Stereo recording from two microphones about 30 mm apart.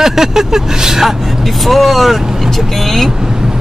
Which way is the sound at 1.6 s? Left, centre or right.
Centre.